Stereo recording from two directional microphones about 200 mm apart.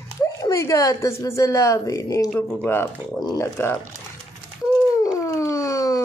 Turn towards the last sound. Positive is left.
turn(degrees=15)  # may be behind; listen again after turning